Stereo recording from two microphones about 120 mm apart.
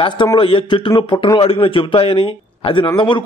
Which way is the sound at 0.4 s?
45° left (ahead or behind).